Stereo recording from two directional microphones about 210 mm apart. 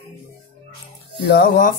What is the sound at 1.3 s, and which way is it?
Speech, 40° left (ahead or behind).